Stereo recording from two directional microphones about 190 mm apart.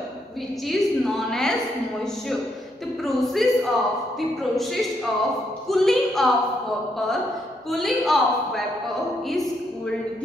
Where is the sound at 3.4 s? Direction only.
Centre (ahead or behind).